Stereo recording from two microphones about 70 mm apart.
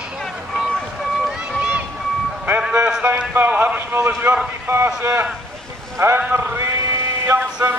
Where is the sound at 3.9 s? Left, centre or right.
Right.